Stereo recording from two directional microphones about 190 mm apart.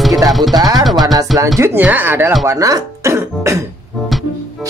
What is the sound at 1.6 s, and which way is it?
Speech, 10° right (ahead or behind).